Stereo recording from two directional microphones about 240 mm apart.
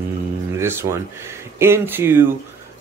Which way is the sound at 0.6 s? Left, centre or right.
Centre.